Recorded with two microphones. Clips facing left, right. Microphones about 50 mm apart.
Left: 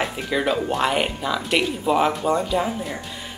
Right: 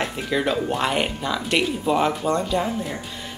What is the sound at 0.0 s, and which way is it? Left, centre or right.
Speech, centre.